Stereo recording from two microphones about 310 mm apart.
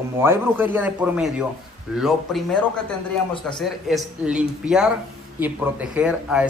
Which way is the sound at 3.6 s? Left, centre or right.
Centre.